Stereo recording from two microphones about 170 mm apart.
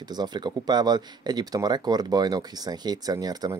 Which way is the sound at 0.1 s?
25° right (ahead or behind).